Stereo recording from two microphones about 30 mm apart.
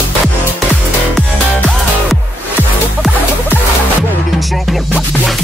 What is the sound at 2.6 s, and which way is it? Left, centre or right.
Music, left.